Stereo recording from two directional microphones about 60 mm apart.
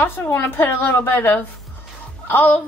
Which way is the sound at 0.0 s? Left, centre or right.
Left.